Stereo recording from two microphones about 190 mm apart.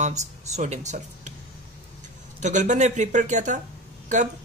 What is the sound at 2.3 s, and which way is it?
Speech, 40° right (ahead or behind).